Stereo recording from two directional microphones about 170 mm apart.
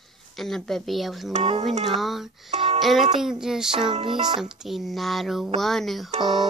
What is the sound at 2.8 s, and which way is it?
Speech, centre (ahead or behind).